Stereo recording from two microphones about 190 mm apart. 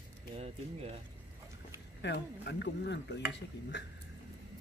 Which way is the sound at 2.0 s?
65° left (ahead or behind).